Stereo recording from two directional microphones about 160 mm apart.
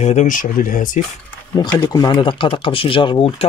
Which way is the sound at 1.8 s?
25° left (ahead or behind).